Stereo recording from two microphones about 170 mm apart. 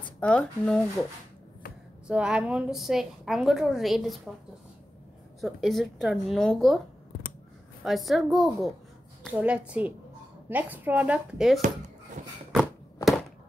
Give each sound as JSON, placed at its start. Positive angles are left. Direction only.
{"t": 0.2, "sound": "speech", "side_deg": 5}
{"t": 2.0, "sound": "a woman's voice", "side_deg": -5}
{"t": 5.4, "sound": "a woman's voice", "side_deg": 0}
{"t": 7.8, "sound": "a woman's voice", "side_deg": 0}
{"t": 12.2, "sound": "a sound", "side_deg": -45}